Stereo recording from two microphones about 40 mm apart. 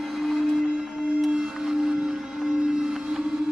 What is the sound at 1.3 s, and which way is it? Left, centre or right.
Music, centre.